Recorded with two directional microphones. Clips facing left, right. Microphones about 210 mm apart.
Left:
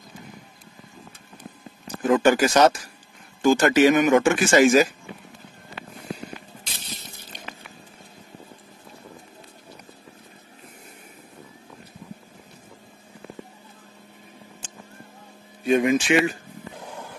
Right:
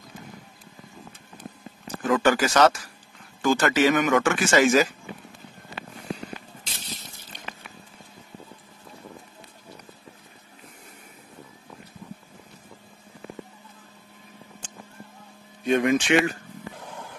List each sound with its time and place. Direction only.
2.0 s speech: 20° left (ahead or behind)
15.6 s speech: 5° left (ahead or behind)